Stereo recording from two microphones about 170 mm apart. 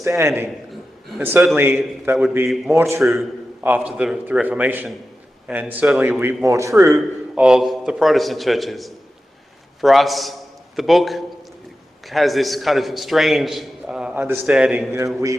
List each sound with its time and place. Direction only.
0.0 s a man's voice: 15° right (ahead or behind)
6.9 s a man's voice: 5° right (ahead or behind)